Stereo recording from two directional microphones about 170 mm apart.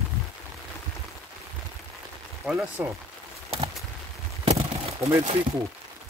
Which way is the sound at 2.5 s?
15° right (ahead or behind).